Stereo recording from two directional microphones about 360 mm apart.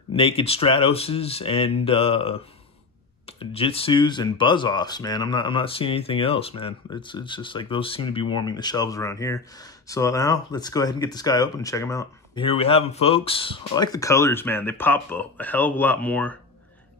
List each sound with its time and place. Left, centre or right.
0.1 s speech: centre